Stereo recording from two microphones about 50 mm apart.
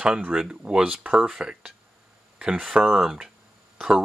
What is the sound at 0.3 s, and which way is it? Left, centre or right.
Speech, centre.